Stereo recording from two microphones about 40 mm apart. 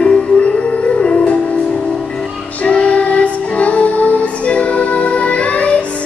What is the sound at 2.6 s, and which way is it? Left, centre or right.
Music, left.